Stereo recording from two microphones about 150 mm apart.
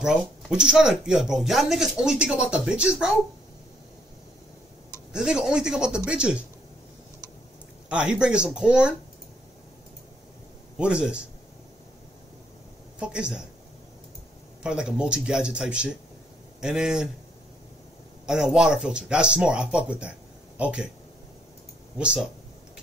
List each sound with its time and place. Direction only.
0.0 s speech: 5° right (ahead or behind)
5.1 s speech: 5° right (ahead or behind)
7.9 s speech: 5° right (ahead or behind)
10.8 s speech: 5° right (ahead or behind)
13.0 s speech: 5° right (ahead or behind)
14.6 s speech: 5° right (ahead or behind)
18.2 s speech: 5° right (ahead or behind)
21.9 s speech: 5° right (ahead or behind)